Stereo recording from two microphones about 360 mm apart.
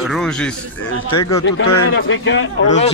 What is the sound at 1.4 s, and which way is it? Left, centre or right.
A man's voice, left.